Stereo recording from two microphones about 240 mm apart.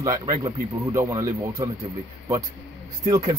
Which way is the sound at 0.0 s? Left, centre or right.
Centre.